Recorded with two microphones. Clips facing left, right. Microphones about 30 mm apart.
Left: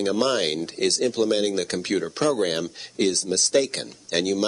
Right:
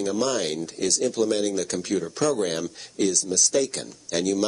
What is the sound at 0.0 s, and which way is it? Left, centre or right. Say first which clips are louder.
Speech: left 2 dB; left.